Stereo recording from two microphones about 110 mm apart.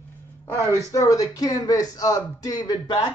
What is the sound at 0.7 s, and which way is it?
Speech, 30° left (ahead or behind).